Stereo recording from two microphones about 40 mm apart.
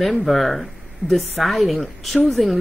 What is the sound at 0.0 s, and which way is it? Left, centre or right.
Speech, centre.